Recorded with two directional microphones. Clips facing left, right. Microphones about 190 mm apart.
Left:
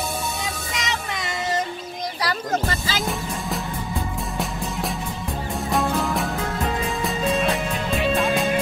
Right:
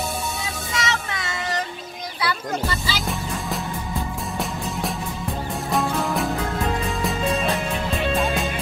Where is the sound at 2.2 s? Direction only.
45° left (ahead or behind).